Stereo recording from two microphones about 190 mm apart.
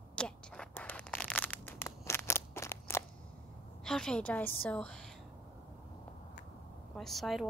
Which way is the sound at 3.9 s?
5° left (ahead or behind).